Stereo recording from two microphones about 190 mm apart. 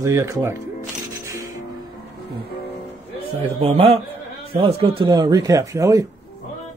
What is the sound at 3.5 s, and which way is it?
Speech, 30° right (ahead or behind).